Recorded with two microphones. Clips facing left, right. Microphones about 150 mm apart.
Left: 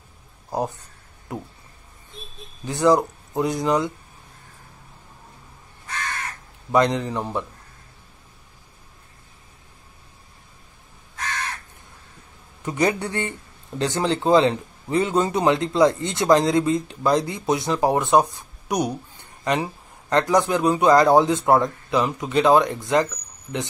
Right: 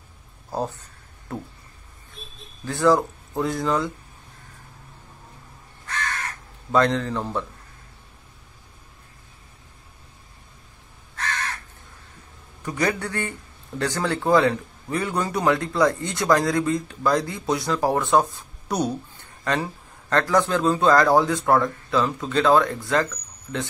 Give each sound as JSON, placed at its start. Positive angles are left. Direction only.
{"t": 0.5, "sound": "speech", "side_deg": 15}
{"t": 2.6, "sound": "speech", "side_deg": 20}
{"t": 6.7, "sound": "speech", "side_deg": 15}
{"t": 12.6, "sound": "a man's voice", "side_deg": 20}